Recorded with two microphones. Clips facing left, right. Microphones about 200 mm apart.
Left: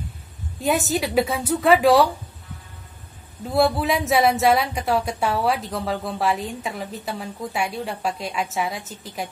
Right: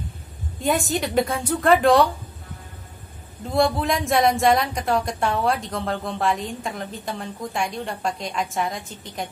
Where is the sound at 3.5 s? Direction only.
5° left (ahead or behind).